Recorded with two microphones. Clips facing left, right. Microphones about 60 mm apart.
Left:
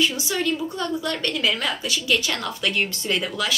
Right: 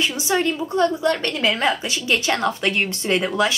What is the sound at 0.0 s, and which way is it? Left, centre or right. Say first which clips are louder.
A woman's voice: right 2 dB; right.